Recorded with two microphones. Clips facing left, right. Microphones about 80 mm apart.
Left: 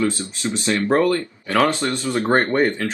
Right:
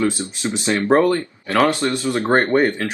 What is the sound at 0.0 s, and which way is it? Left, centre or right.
Speech, centre.